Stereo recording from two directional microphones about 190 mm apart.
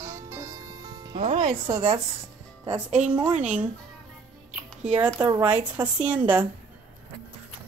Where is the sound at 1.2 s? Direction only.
40° right (ahead or behind).